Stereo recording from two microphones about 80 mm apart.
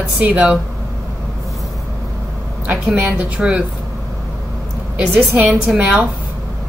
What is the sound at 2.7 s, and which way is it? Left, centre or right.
Speech, centre.